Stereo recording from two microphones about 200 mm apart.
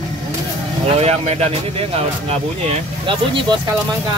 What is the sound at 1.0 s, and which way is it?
Vehicle, 30° right (ahead or behind).